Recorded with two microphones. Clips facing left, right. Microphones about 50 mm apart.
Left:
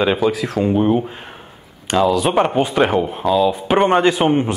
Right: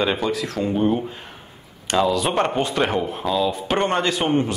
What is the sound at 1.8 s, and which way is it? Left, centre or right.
Speech, centre.